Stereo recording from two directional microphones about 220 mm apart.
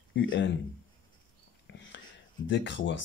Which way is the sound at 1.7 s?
55° left (ahead or behind).